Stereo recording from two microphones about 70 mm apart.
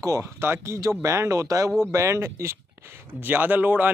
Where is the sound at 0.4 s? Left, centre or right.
Right.